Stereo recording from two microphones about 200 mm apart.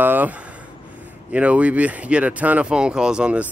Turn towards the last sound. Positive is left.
turn(degrees=-5)  # may be behind; listen again after turning